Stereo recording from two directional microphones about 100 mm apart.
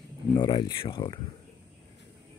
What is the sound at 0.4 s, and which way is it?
Speech, 50° left (ahead or behind).